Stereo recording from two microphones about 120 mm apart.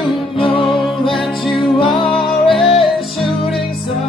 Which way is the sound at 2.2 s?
Centre (ahead or behind).